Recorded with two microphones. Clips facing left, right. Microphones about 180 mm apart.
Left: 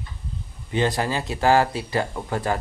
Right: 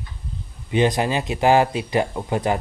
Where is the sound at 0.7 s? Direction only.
20° right (ahead or behind).